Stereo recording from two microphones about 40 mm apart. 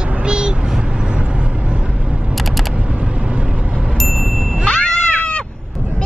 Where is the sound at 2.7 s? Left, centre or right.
Right.